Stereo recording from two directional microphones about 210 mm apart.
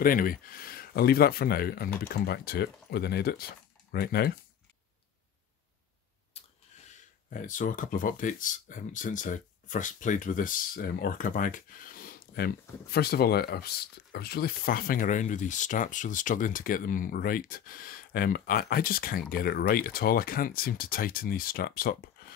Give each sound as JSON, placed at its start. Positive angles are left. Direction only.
{"t": 0.0, "sound": "speech", "side_deg": 45}
{"t": 6.4, "sound": "a sound", "side_deg": 30}
{"t": 7.2, "sound": "speech", "side_deg": 40}